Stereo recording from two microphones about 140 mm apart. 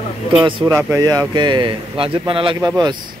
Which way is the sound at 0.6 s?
30° right (ahead or behind).